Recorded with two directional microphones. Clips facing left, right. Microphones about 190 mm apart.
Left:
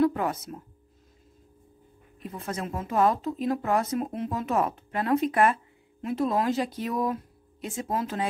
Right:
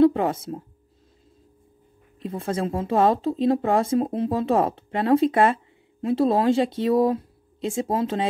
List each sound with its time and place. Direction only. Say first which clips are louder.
0.0 s speech: right 6 dB; 25° right (ahead or behind)
2.1 s speech: right 7 dB; 30° right (ahead or behind)